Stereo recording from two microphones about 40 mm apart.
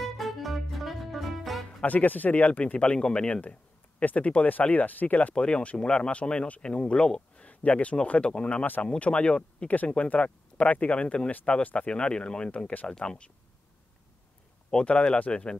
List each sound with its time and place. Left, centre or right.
0.0 s music: centre
1.9 s speech: left
2.6 s speech: left
4.0 s speech: left
5.3 s speech: left
12.8 s speech: centre
14.7 s speech: left